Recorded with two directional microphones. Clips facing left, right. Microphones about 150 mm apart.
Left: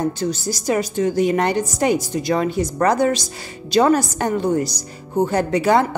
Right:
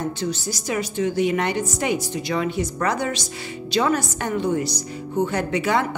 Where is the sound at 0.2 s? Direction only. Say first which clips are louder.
Left 4 dB; 40° left (ahead or behind).